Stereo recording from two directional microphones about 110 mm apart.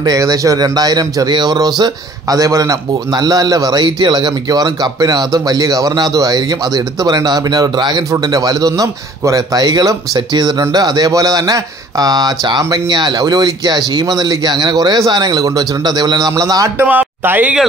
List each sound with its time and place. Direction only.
0.0 s a man's voice: 35° right (ahead or behind)
16.7 s speech: 15° right (ahead or behind)